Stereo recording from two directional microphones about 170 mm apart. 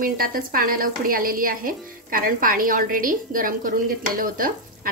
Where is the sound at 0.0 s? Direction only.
55° right (ahead or behind).